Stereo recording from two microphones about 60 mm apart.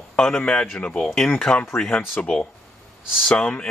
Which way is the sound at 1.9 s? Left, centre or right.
Left.